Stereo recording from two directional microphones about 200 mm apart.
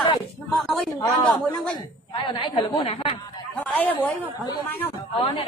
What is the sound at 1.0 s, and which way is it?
A woman's voice, 20° left (ahead or behind).